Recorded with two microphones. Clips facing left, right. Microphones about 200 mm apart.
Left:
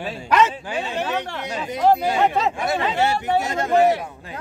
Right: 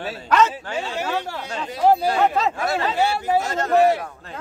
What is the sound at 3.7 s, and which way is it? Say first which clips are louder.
Speech: even; centre (ahead or behind).